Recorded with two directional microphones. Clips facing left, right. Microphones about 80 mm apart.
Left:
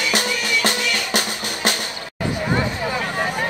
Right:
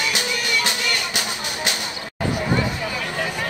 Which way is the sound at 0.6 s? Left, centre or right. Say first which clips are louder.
Left 3 dB; left.